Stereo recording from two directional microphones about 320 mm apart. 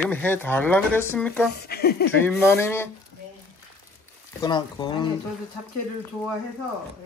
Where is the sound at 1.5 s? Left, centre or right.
Left.